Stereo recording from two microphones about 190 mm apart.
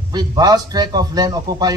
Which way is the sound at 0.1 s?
20° right (ahead or behind).